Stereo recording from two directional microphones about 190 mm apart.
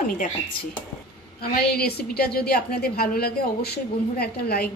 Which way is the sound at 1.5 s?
55° left (ahead or behind).